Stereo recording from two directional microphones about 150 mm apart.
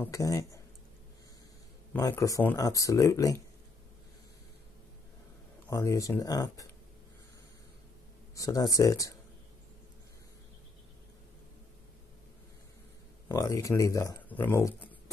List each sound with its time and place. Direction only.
0.0 s speech: 20° left (ahead or behind)
2.0 s speech: 20° left (ahead or behind)
5.7 s speech: 20° left (ahead or behind)
8.4 s speech: 25° left (ahead or behind)
13.3 s speech: 20° left (ahead or behind)